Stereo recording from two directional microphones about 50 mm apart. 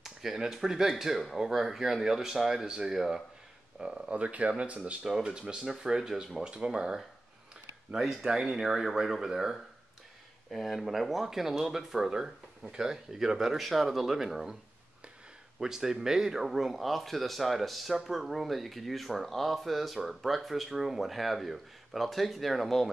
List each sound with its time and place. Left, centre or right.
0.0 s speech: centre
3.0 s speech: centre
4.1 s speech: right; by 14.6 s centre
15.6 s speech: centre